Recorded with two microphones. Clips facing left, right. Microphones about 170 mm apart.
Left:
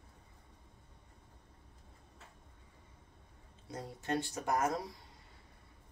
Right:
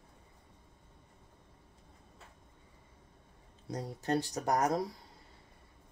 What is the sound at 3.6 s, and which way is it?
Speech, 35° right (ahead or behind).